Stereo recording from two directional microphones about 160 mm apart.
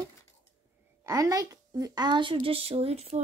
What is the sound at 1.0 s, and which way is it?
Speech, 20° right (ahead or behind).